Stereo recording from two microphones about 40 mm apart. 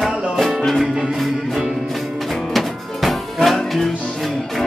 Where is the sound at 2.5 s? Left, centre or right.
Centre.